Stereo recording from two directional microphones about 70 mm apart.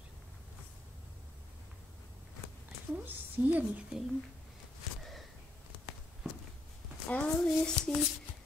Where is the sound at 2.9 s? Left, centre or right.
Right.